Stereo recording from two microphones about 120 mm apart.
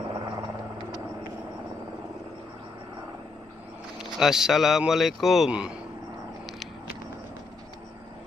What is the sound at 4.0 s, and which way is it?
Speech, 5° right (ahead or behind).